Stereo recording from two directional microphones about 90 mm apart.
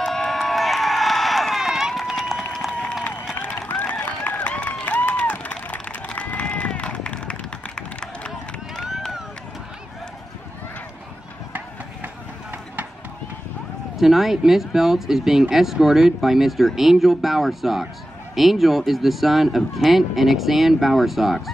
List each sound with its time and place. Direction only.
0.0 s run: 5° left (ahead or behind)
2.5 s applause: 5° left (ahead or behind)
3.3 s run: 20° left (ahead or behind)
11.5 s run: 20° right (ahead or behind)
13.9 s speech: 5° right (ahead or behind)